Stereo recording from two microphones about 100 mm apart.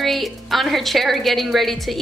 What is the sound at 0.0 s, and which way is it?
A woman's voice, centre (ahead or behind).